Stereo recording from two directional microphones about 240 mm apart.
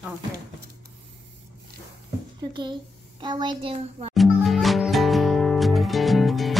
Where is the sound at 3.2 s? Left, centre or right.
Centre.